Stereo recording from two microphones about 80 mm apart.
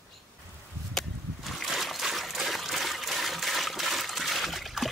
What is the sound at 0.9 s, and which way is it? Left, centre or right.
Trickle, centre.